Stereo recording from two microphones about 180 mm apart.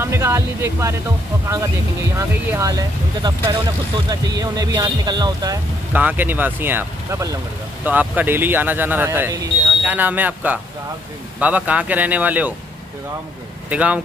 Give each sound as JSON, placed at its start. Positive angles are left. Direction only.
{"t": 0.0, "sound": "speech", "side_deg": -15}
{"t": 2.1, "sound": "speech", "side_deg": -15}
{"t": 5.9, "sound": "speech", "side_deg": -10}
{"t": 13.7, "sound": "speech", "side_deg": -5}